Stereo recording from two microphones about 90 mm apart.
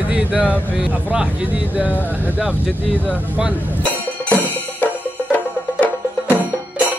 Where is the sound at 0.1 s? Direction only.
10° right (ahead or behind).